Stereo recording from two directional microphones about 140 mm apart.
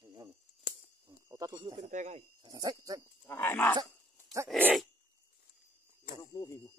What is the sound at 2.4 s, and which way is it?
Speech, 25° right (ahead or behind).